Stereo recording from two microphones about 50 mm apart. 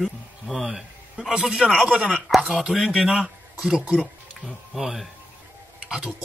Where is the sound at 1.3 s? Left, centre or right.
Right.